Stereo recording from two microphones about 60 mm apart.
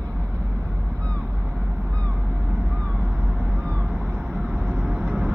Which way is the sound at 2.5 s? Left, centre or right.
Centre.